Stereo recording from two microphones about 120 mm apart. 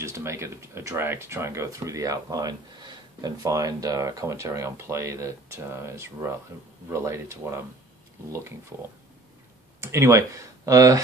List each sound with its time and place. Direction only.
0.0 s speech: 25° right (ahead or behind)
8.7 s speech: 20° right (ahead or behind)